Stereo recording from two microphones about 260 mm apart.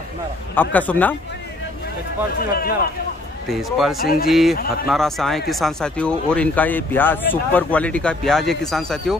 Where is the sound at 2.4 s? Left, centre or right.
Left.